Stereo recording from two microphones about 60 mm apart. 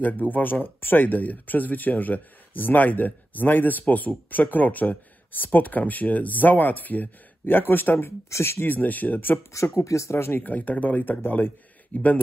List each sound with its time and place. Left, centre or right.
0.0 s speech: left
8.3 s speech: left
9.5 s speech: left
10.4 s speech: left